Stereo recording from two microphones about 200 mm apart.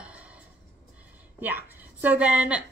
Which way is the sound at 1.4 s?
10° right (ahead or behind).